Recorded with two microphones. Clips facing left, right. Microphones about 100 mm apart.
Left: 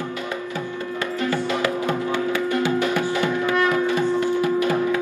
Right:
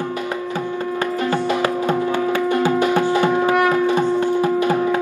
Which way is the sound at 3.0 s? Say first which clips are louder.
Right 5 dB; 20° right (ahead or behind).